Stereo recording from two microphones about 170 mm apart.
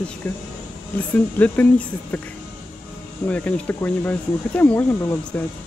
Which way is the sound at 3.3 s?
10° left (ahead or behind).